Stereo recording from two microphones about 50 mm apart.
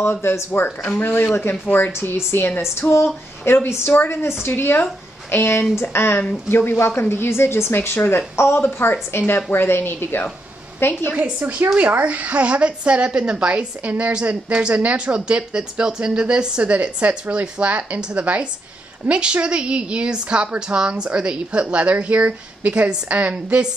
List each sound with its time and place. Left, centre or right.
0.0 s a woman's voice: left
0.7 s speech: left
1.0 s speech: left
1.5 s speech: left
1.9 s speech: left
3.4 s a woman's voice: left
11.1 s a woman's voice: right